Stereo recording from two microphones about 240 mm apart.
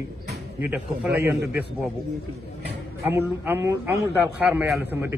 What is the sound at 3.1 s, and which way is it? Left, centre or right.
A man's voice, centre.